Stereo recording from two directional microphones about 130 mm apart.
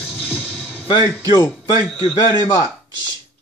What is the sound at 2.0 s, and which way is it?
Speech, 45° left (ahead or behind).